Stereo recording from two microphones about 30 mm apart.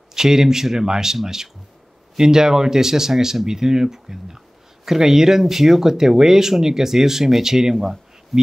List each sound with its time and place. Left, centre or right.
0.1 s speech: centre
7.7 s speech: centre